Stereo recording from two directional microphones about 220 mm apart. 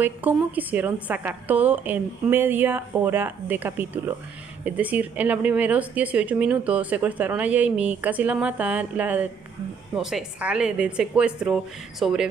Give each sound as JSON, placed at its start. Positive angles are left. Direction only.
{"t": 0.0, "sound": "a woman's voice", "side_deg": -10}